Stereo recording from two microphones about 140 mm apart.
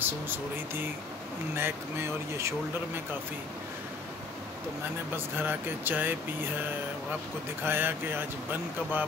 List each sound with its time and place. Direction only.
1.6 s speech: 20° right (ahead or behind)
5.1 s speech: 15° right (ahead or behind)
7.6 s speech: 15° right (ahead or behind)